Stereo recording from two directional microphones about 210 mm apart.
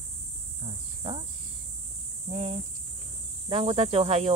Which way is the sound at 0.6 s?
30° right (ahead or behind).